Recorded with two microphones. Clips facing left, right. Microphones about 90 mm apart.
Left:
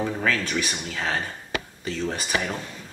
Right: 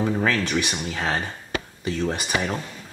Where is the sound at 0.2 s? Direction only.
20° right (ahead or behind).